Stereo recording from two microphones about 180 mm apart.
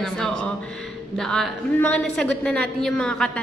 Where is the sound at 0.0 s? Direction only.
5° left (ahead or behind).